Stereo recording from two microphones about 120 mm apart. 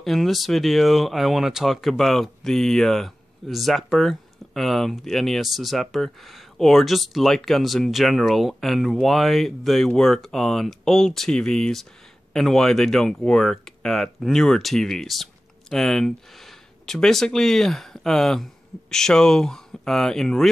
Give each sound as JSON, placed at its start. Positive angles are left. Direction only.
{"t": 0.0, "sound": "speech", "side_deg": 0}